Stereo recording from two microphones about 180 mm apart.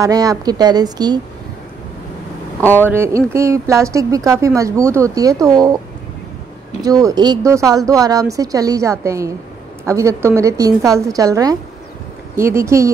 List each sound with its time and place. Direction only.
0.0 s speech: 20° right (ahead or behind)
2.6 s speech: 10° left (ahead or behind)
2.9 s speech: 15° right (ahead or behind)
6.8 s speech: 20° right (ahead or behind)